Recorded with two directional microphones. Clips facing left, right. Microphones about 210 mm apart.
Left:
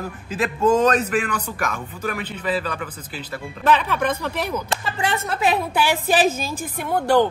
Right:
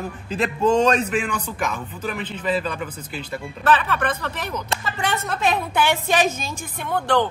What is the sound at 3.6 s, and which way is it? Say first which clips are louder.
Speech: left 1 dB; 15° left (ahead or behind).